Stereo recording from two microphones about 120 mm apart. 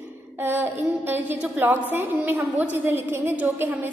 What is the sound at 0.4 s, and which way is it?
A woman's voice, 20° right (ahead or behind).